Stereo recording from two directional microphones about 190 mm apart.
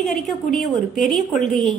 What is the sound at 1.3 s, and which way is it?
Speech, centre (ahead or behind).